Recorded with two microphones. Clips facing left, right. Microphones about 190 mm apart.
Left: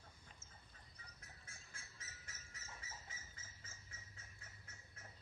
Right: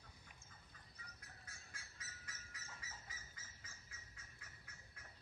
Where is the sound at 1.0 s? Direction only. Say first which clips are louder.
Right 2 dB; 25° left (ahead or behind).